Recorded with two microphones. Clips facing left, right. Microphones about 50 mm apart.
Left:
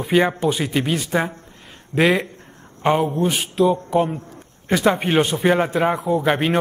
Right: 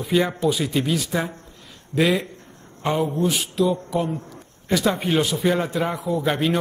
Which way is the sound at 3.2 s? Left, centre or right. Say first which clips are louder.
Left 3 dB; left.